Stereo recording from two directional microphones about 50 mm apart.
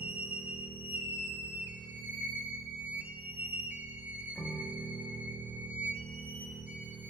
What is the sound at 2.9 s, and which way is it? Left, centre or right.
Music, right.